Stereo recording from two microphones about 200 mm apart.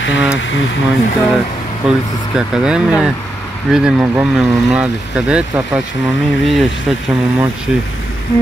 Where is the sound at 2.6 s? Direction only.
5° right (ahead or behind).